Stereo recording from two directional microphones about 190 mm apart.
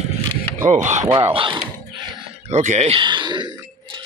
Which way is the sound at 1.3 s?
25° right (ahead or behind).